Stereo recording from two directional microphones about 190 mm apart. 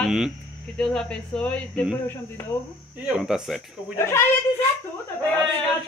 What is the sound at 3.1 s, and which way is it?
Speech, centre (ahead or behind).